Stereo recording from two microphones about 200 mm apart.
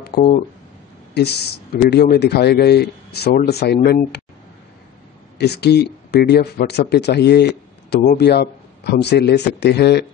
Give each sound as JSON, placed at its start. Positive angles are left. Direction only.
{"t": 0.0, "sound": "speech", "side_deg": 50}
{"t": 5.4, "sound": "speech", "side_deg": 55}